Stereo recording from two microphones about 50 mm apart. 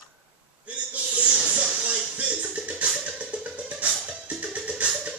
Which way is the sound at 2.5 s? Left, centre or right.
Right.